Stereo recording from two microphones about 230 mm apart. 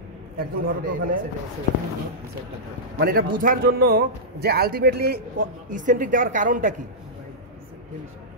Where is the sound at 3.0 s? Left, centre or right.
Right.